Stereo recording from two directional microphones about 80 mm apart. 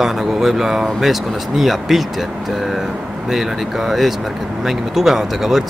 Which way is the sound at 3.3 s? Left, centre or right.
Centre.